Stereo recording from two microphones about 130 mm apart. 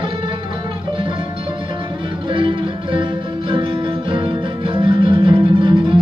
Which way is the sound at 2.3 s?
40° right (ahead or behind).